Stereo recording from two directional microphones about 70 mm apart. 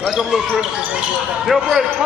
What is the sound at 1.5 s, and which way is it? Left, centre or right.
Speech, centre.